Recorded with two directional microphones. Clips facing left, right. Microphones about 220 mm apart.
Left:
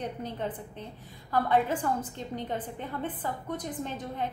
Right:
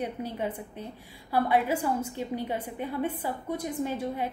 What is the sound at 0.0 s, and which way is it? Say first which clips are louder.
A woman's voice: right 2 dB; 10° right (ahead or behind).